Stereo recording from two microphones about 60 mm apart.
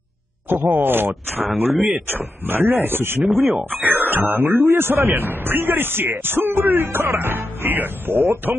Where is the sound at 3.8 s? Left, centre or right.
Right.